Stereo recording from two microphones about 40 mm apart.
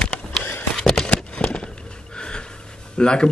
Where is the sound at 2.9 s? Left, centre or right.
Left.